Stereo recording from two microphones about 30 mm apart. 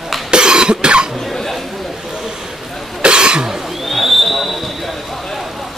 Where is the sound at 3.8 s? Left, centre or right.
Centre.